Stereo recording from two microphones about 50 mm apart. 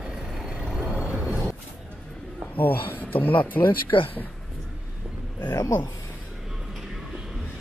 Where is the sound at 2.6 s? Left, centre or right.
Left.